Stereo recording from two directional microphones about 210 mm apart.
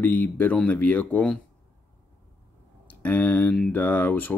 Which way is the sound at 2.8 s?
5° left (ahead or behind).